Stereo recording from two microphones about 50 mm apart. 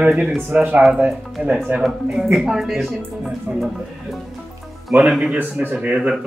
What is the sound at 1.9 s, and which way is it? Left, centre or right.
Speech, centre.